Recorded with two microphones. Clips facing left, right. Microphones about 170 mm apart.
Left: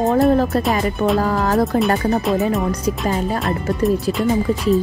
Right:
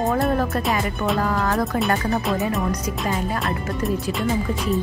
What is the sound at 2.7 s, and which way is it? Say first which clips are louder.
Speech: left 4 dB; 30° left (ahead or behind).